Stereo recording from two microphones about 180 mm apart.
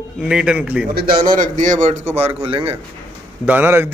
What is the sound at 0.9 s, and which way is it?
A man's voice, 55° right (ahead or behind).